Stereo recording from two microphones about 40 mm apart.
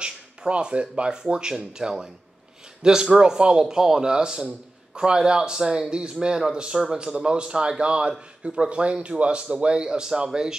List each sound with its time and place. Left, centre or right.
0.0 s speech: right